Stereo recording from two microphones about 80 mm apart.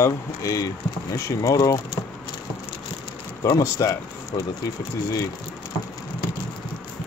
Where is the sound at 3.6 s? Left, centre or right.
Left.